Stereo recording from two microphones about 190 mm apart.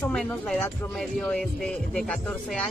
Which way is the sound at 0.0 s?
5° left (ahead or behind).